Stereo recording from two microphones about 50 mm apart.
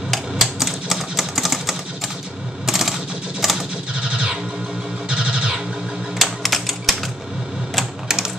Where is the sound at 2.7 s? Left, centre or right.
Centre.